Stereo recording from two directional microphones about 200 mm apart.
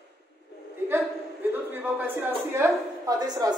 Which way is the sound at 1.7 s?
10° right (ahead or behind).